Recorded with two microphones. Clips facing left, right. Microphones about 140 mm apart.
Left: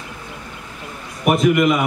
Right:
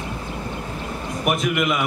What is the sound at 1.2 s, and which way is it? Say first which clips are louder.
Speech: left 7 dB; centre (ahead or behind).